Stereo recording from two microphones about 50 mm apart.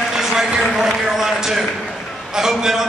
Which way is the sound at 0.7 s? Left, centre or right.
Centre.